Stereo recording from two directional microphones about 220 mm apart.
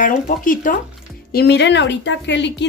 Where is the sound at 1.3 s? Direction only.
50° left (ahead or behind).